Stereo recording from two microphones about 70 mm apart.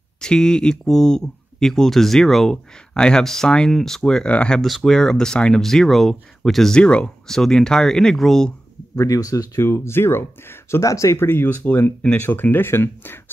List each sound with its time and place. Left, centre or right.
0.2 s speech: centre
4.6 s speech: centre
8.9 s speech: left
9.6 s speech: left
10.8 s speech: left
11.1 s speech: left